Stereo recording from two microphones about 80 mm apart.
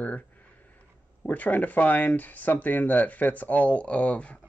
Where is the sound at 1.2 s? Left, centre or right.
Centre.